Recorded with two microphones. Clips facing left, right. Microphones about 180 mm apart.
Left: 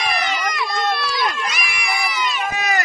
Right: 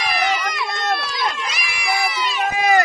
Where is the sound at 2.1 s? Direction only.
30° right (ahead or behind).